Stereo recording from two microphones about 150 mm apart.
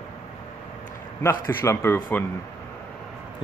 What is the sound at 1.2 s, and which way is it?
Speech, 15° left (ahead or behind).